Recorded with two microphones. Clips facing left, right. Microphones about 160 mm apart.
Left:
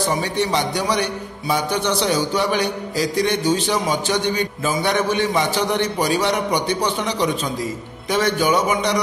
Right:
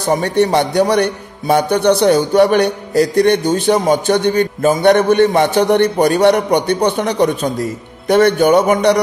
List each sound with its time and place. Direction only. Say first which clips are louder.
0.1 s a man's voice: right 7 dB; 55° right (ahead or behind)